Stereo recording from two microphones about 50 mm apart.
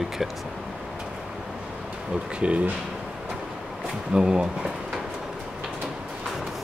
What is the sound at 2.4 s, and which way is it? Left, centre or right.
Speech, right.